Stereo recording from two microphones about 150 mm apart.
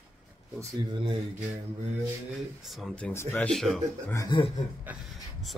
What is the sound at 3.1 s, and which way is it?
Speech, 15° left (ahead or behind).